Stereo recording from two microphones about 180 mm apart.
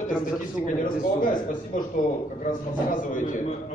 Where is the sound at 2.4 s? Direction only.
50° left (ahead or behind).